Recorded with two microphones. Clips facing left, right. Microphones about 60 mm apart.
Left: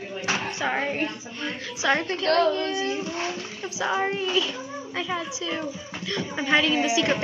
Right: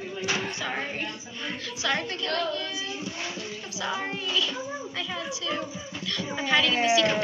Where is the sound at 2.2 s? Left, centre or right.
Left.